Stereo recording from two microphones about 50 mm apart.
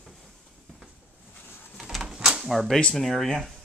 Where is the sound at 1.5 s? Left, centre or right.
Left.